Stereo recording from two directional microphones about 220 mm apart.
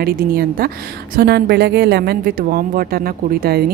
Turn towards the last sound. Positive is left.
turn(degrees=-45)  # may be behind; listen again after turning